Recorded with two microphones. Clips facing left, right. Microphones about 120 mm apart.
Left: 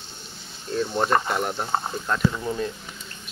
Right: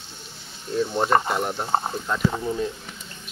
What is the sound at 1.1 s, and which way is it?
Speech, 20° right (ahead or behind).